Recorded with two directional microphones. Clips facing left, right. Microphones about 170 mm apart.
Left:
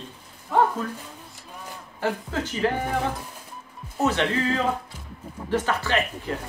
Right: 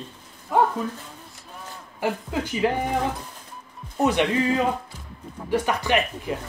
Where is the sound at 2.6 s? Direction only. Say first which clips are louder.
Right 1 dB; 15° right (ahead or behind).